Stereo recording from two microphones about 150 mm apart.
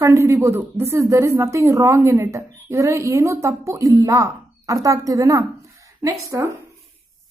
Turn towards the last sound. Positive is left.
turn(degrees=-20)  # may be behind; listen again after turning